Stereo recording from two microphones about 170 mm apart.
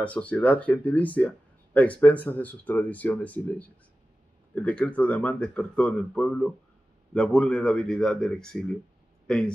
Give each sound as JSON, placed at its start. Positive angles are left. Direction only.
{"t": 0.0, "sound": "speech", "side_deg": 10}